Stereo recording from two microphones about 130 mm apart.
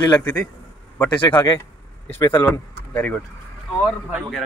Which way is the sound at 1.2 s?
35° left (ahead or behind).